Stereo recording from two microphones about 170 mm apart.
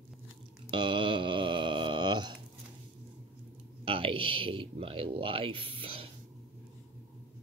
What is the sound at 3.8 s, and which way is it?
Speech, 30° right (ahead or behind).